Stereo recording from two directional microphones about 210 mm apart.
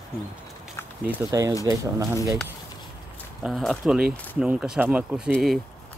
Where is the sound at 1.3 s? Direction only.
15° right (ahead or behind).